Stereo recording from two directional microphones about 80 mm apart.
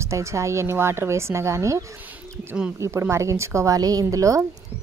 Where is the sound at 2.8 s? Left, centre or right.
Right.